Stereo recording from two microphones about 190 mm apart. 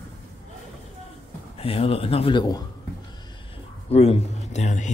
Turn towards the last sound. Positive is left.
turn(degrees=40)  # may be behind; listen again after turning